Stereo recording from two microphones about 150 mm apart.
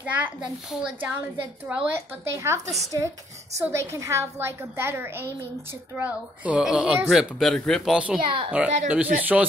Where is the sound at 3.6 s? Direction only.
20° right (ahead or behind); by 8.2 s 5° right (ahead or behind).